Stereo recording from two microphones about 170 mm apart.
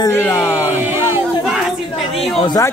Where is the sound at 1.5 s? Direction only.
Centre (ahead or behind).